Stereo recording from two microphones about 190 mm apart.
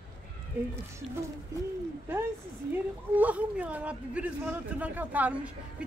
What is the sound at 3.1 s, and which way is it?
Speech, 10° right (ahead or behind).